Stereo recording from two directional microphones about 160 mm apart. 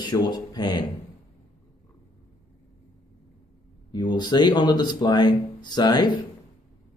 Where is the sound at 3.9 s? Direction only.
25° left (ahead or behind).